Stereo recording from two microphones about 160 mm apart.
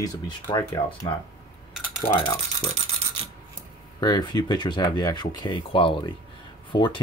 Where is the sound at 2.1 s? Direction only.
25° left (ahead or behind).